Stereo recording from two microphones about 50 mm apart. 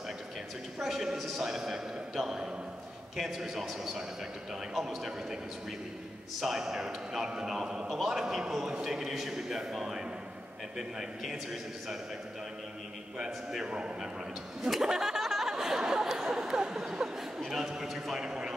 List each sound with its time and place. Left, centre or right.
0.7 s a man's voice: centre
6.4 s a man's voice: centre
7.9 s a man's voice: centre
13.2 s a man's voice: centre
13.7 s a man's voice: right
14.6 s a sound: centre
17.7 s a man's voice: centre